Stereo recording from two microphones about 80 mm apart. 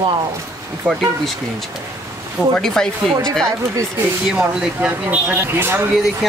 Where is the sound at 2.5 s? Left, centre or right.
Centre.